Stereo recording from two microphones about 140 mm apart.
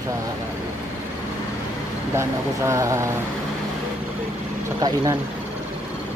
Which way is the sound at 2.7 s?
20° right (ahead or behind).